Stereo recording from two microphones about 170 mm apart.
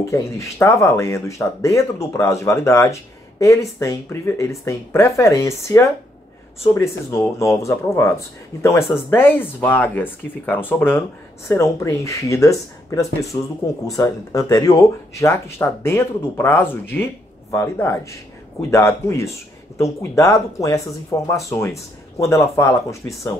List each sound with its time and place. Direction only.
0.1 s speech: 15° left (ahead or behind)